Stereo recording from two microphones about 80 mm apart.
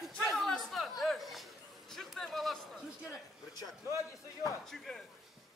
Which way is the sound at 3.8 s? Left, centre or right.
Left.